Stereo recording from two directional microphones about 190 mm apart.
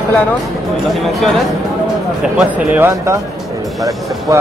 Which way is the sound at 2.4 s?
10° right (ahead or behind).